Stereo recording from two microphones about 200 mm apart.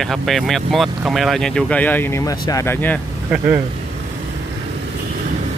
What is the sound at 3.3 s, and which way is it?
Speech, 10° right (ahead or behind).